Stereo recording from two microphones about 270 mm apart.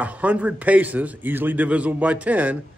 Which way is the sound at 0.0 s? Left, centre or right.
Centre.